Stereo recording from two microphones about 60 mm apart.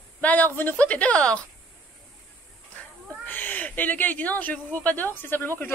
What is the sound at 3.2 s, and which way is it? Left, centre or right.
Speech, left.